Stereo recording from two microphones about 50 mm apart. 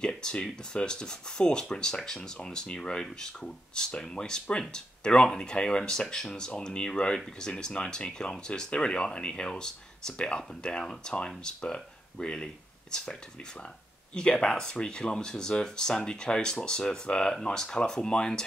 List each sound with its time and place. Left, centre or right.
0.2 s speech: centre